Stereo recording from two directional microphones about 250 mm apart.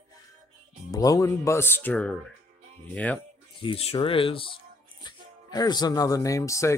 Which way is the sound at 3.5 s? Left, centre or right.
Left.